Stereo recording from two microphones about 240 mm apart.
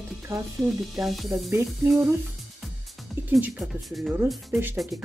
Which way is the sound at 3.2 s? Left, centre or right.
Centre.